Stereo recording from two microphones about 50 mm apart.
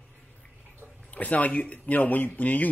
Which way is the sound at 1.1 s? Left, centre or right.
Left.